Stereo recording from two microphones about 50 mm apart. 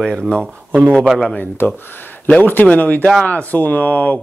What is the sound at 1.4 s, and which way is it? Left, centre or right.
Speech, left.